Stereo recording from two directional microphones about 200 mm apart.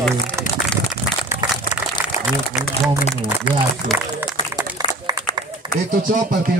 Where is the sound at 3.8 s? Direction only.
45° right (ahead or behind).